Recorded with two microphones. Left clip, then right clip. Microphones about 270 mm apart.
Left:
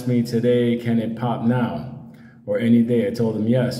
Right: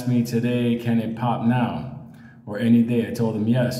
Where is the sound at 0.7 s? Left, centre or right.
Right.